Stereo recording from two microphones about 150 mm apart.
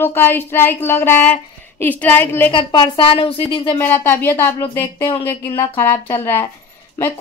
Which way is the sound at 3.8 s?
15° left (ahead or behind).